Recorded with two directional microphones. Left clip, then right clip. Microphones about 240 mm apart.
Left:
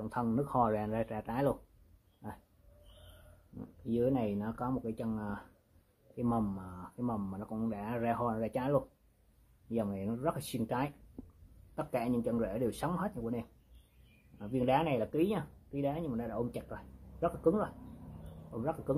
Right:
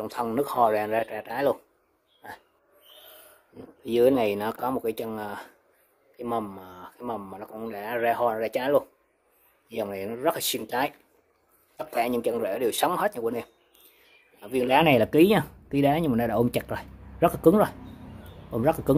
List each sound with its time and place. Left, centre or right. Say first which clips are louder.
0.0 s speech: right 8 dB; right
3.9 s speech: right 12 dB; right
6.2 s speech: right 6 dB; centre
14.5 s speech: right 11 dB; right